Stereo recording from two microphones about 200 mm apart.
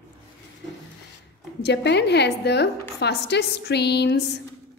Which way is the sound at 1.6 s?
60° left (ahead or behind).